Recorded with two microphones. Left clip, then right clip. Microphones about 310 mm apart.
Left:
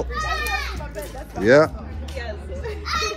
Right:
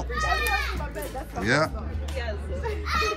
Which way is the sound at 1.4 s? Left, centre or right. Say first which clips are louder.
Left 9 dB; centre.